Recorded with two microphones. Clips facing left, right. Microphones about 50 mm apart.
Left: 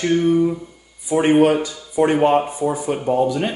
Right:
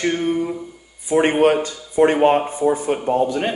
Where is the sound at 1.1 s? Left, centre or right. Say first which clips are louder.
Left 1 dB; right.